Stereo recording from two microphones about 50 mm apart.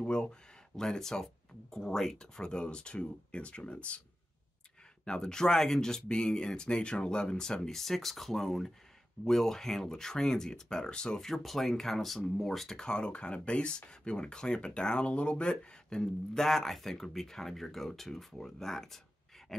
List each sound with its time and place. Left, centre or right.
0.0 s speech: centre
5.0 s speech: centre